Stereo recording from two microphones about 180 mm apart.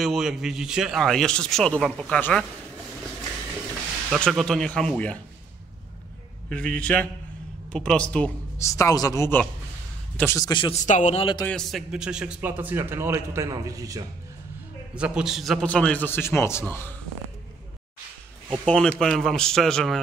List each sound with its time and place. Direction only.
0.0 s speech: centre (ahead or behind)
4.1 s speech: centre (ahead or behind)
6.5 s a man's voice: 5° left (ahead or behind)
8.6 s a man's voice: 15° left (ahead or behind)
10.8 s a man's voice: 40° left (ahead or behind)
11.4 s a man's voice: centre (ahead or behind); by 14.0 s 20° right (ahead or behind)
15.0 s a man's voice: 5° right (ahead or behind); by 16.9 s 15° left (ahead or behind)
18.7 s speech: 5° left (ahead or behind)